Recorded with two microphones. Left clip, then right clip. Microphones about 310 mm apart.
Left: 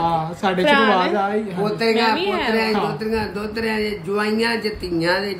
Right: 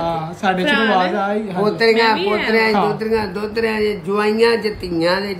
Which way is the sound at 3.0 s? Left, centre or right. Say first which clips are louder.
Right 4 dB; right.